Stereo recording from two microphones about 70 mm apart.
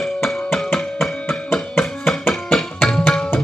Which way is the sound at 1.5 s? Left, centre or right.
Left.